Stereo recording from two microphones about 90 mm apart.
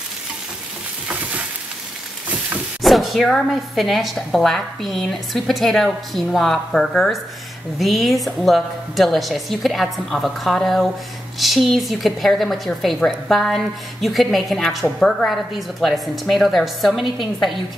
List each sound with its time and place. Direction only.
2.8 s a woman's voice: centre (ahead or behind)